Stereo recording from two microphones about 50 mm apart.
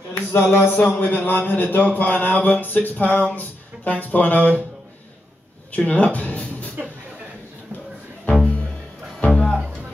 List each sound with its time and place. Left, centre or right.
0.1 s a sound: left
1.0 s music: left
5.7 s speech: left
8.3 s music: left
9.3 s music: centre